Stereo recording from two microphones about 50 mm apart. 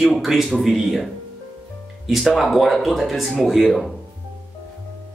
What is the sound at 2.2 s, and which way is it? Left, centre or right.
Speech, centre.